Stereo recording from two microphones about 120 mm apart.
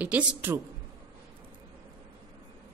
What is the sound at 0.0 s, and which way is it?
Speech, 10° right (ahead or behind).